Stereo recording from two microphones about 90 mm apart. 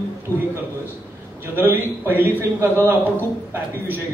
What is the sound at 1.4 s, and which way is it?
A man's voice, 25° right (ahead or behind).